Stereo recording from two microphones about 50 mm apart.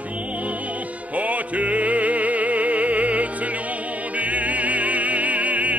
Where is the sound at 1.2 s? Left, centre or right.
Right.